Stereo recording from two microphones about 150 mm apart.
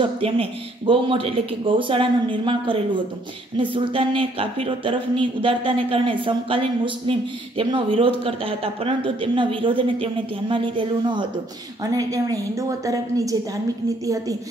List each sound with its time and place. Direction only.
0.0 s a woman's voice: 35° right (ahead or behind)